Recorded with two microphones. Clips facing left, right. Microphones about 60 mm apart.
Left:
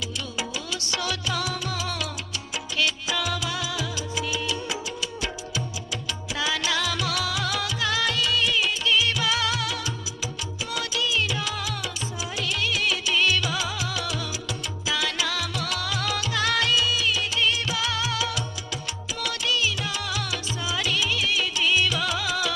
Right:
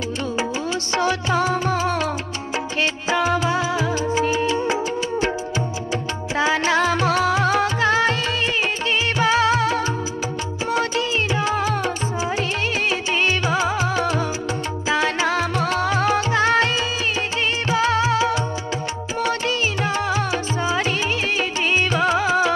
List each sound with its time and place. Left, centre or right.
0.9 s music: right
6.3 s music: right
13.1 s music: right